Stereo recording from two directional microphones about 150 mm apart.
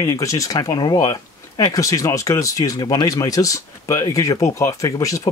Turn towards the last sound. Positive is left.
turn(degrees=20)  # may be behind; listen again after turning